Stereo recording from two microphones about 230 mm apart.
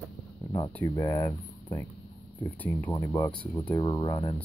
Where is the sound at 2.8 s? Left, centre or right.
Centre.